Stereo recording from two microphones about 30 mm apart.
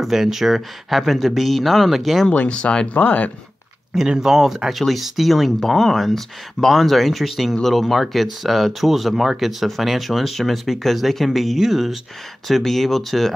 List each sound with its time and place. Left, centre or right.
0.0 s speech: centre
0.5 s speech: centre
2.3 s speech: left
2.9 s speech: left
3.9 s speech: centre